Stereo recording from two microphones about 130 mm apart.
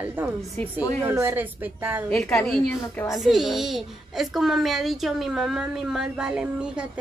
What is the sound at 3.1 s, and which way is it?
A child's voice, centre (ahead or behind).